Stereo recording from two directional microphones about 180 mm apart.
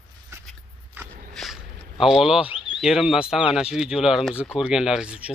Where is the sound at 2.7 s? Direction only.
Centre (ahead or behind).